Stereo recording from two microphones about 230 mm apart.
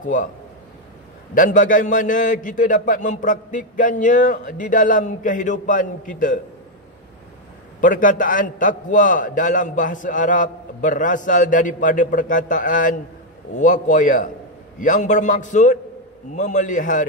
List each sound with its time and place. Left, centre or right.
0.0 s a man's voice: left
1.3 s a man's voice: left
7.8 s a man's voice: left